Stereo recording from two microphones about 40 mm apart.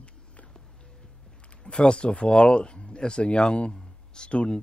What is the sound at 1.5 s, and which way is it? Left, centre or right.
Speech, left.